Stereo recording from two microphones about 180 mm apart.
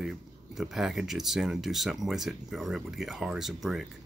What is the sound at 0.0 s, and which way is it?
Speech, centre (ahead or behind).